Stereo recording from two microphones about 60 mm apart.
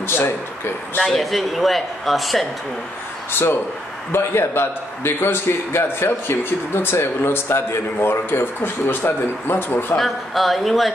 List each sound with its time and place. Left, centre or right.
0.0 s a sound: left
1.0 s speech: centre
3.3 s a man's voice: left
9.9 s speech: centre